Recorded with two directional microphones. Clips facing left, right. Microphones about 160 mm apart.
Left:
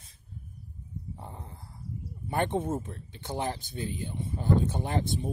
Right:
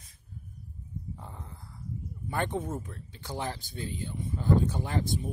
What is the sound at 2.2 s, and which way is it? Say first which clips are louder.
Speech: left 3 dB; 25° left (ahead or behind).